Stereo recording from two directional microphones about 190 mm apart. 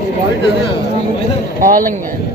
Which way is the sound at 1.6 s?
45° right (ahead or behind).